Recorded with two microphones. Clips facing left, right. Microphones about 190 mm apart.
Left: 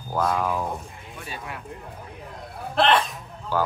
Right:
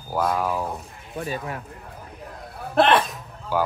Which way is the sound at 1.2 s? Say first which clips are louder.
Right 7 dB; 40° right (ahead or behind).